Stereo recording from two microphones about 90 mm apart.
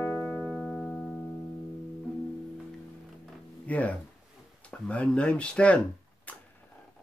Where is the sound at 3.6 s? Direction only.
15° left (ahead or behind).